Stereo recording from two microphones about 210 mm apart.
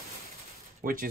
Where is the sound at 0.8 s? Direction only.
40° right (ahead or behind).